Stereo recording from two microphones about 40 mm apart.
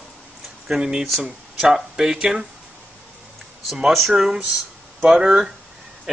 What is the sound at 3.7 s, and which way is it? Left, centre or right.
Speech, centre.